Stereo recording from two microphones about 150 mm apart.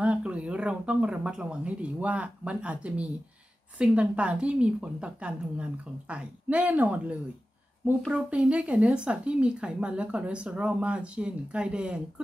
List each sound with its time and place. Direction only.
0.0 s a woman's voice: 10° right (ahead or behind)